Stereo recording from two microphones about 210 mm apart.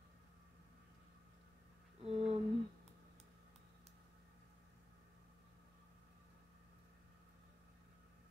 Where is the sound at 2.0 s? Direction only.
30° right (ahead or behind).